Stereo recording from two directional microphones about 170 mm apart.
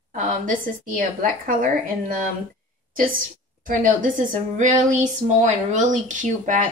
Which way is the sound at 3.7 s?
50° right (ahead or behind).